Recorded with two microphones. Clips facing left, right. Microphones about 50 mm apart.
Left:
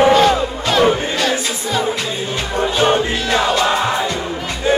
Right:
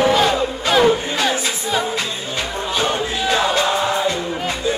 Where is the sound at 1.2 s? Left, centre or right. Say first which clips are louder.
Left 1 dB; centre.